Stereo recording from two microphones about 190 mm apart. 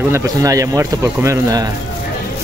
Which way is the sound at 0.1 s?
15° right (ahead or behind).